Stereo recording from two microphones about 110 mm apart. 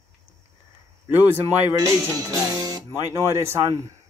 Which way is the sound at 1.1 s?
20° right (ahead or behind).